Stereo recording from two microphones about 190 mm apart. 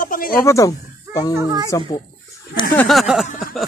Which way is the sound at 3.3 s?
45° left (ahead or behind).